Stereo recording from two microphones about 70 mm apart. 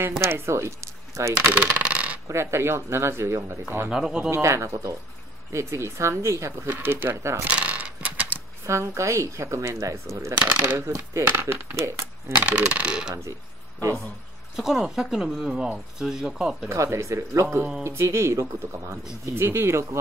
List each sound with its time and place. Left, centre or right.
0.2 s speech: right
1.4 s speech: right
2.2 s speech: right
3.9 s speech: centre
4.3 s speech: right
6.7 s speech: right
7.4 s coin: centre
8.6 s speech: right
10.6 s speech: right
12.4 s speech: centre
14.5 s speech: centre
16.6 s speech: right